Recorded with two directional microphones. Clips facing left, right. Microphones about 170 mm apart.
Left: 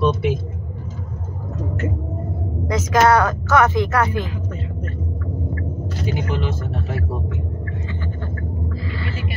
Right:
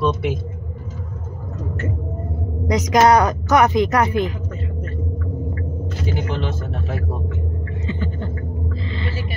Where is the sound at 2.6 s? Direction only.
15° right (ahead or behind).